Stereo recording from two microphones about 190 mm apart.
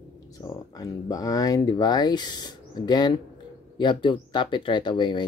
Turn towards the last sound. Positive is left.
turn(degrees=25)  # may be behind; listen again after turning